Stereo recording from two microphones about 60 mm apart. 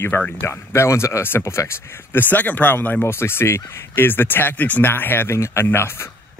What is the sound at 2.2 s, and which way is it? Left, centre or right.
Speech, left.